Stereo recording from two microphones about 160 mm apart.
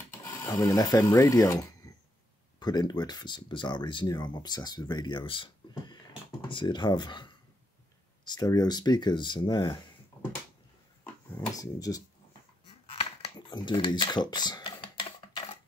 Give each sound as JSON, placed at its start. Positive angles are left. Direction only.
{"t": 0.2, "sound": "rub", "side_deg": 15}
{"t": 2.6, "sound": "speech", "side_deg": 25}
{"t": 10.1, "sound": "a sound", "side_deg": 20}
{"t": 11.4, "sound": "speech", "side_deg": 20}
{"t": 13.0, "sound": "computer keyboard", "side_deg": 35}